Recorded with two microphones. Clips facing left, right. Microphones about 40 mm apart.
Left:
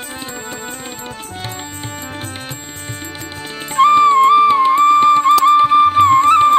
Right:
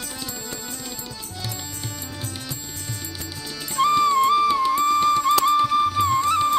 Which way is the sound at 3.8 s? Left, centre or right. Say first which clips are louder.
Left 9 dB; left.